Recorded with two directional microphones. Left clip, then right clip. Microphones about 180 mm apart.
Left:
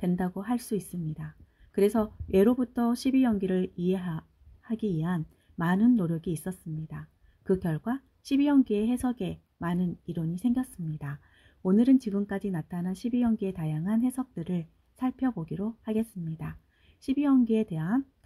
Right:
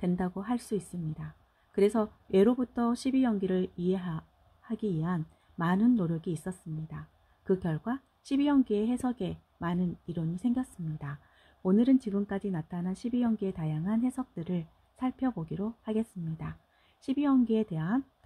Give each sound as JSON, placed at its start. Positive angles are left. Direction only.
{"t": 0.0, "sound": "speech", "side_deg": -5}